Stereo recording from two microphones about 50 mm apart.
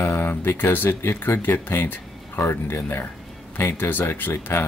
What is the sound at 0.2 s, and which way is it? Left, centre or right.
Speech, left.